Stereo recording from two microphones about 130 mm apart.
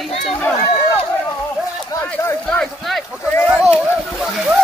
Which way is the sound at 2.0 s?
10° left (ahead or behind).